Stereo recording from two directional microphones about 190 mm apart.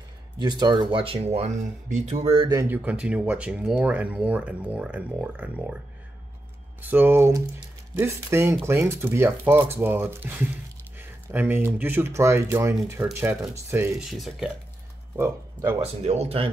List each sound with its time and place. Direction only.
0.4 s speech: 20° right (ahead or behind)
2.7 s speech: 10° right (ahead or behind)
6.8 s speech: 10° right (ahead or behind)
14.1 s speech: centre (ahead or behind)
15.1 s speech: 10° right (ahead or behind)
15.8 s speech: 35° right (ahead or behind)